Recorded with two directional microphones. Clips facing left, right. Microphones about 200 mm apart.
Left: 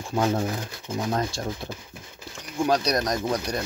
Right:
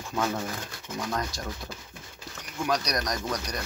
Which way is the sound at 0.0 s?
30° left (ahead or behind).